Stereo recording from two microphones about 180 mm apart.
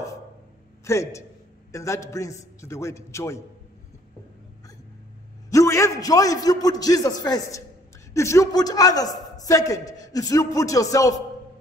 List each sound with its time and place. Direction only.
0.8 s a man's voice: 15° left (ahead or behind)
5.5 s a man's voice: 15° left (ahead or behind)